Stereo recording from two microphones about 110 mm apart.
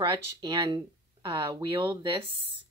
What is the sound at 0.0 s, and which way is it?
Speech, 45° right (ahead or behind).